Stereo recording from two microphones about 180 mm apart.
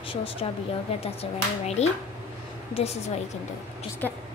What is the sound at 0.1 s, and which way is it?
A child's voice, 30° left (ahead or behind).